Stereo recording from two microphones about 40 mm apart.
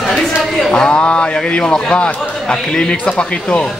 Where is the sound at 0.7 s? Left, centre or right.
Left.